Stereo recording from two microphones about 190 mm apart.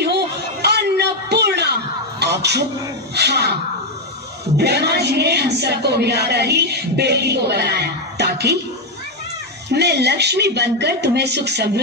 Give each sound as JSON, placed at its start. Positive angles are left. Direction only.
{"t": 0.0, "sound": "a sound", "side_deg": -60}
{"t": 3.2, "sound": "speech", "side_deg": -60}
{"t": 4.6, "sound": "speech", "side_deg": -60}
{"t": 9.7, "sound": "speech", "side_deg": -60}